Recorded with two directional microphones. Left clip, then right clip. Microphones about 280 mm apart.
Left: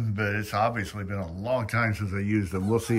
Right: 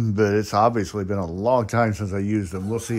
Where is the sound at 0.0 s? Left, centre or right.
Centre.